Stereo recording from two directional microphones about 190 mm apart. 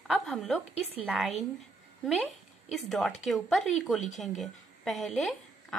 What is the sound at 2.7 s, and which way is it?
A woman's voice, centre (ahead or behind).